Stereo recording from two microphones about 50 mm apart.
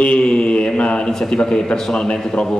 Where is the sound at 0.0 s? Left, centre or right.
Left.